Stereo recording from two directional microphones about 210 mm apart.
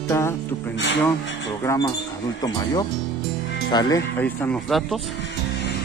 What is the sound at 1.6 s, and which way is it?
Speech, 15° left (ahead or behind).